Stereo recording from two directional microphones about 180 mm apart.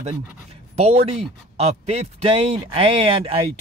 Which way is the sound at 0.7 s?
35° right (ahead or behind).